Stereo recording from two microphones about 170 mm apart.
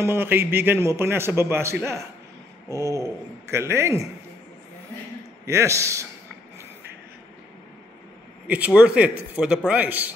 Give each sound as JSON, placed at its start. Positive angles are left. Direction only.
{"t": 0.0, "sound": "a man's voice", "side_deg": -15}
{"t": 5.4, "sound": "a man's voice", "side_deg": -15}
{"t": 8.5, "sound": "a man's voice", "side_deg": -10}